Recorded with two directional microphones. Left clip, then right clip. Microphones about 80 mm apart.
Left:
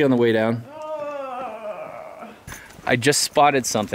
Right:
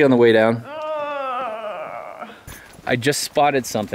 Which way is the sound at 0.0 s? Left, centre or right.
Centre.